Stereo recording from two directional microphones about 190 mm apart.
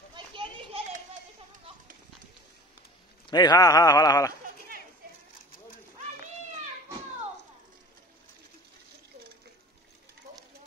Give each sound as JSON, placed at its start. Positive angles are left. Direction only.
{"t": 0.1, "sound": "children playing", "side_deg": -25}
{"t": 3.3, "sound": "speech", "side_deg": 20}